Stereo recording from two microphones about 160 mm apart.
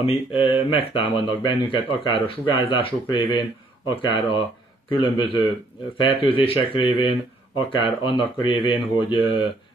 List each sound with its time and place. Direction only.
0.0 s speech: 35° left (ahead or behind)